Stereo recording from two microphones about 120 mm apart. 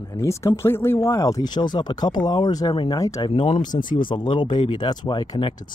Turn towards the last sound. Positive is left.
turn(degrees=40)  # may be behind; listen again after turning